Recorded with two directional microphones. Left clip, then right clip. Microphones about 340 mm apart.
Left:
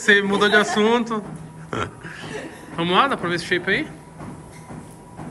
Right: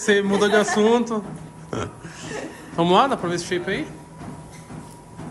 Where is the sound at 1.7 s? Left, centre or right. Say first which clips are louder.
Left 3 dB; centre.